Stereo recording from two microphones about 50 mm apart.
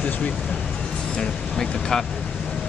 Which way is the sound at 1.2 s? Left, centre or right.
Centre.